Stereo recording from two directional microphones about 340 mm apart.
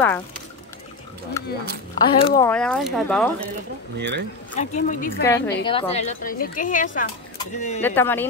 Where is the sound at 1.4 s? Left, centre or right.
Centre.